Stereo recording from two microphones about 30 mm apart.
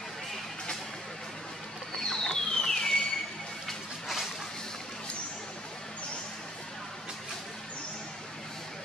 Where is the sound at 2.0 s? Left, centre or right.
Centre.